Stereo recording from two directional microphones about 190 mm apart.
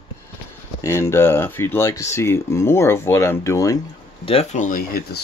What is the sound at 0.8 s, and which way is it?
Speech, 15° left (ahead or behind).